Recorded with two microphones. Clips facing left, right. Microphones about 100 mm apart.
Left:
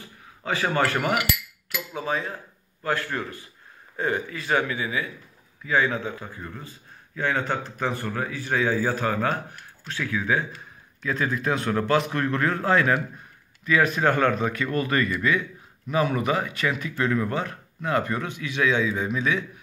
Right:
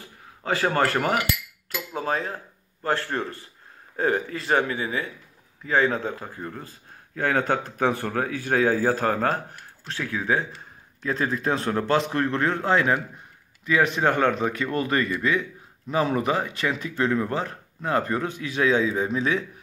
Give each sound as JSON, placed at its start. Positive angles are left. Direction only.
{"t": 0.4, "sound": "speech", "side_deg": -40}
{"t": 3.9, "sound": "speech", "side_deg": -45}